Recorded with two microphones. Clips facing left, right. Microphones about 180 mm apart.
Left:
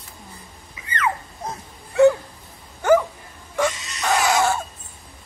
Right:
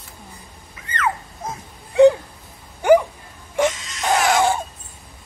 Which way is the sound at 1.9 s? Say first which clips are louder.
Right 3 dB; 15° right (ahead or behind).